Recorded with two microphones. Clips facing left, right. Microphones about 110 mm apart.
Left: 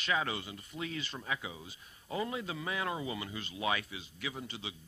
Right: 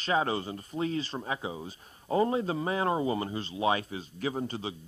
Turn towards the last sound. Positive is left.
turn(degrees=-40)  # may be behind; listen again after turning